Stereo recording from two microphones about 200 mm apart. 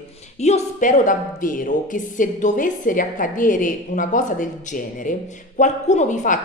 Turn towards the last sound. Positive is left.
turn(degrees=40)  # may be behind; listen again after turning